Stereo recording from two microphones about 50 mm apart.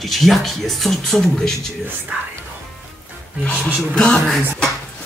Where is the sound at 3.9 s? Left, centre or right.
Centre.